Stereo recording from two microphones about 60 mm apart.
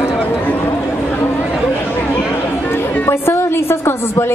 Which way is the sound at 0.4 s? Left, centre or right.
Left.